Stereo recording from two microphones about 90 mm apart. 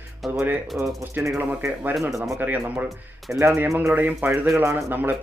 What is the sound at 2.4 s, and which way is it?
Speech, 20° right (ahead or behind).